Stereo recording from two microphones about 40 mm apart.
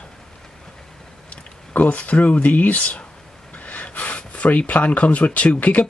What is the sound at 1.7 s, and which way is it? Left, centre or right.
Speech, left.